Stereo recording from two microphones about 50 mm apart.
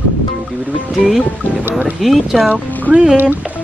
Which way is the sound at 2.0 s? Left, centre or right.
Centre.